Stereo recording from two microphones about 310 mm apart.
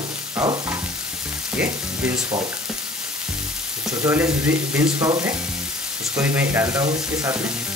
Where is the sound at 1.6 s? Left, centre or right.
Centre.